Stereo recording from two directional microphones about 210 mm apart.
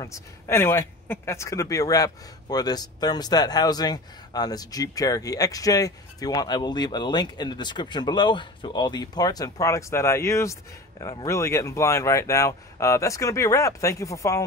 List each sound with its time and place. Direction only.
0.0 s speech: 15° left (ahead or behind)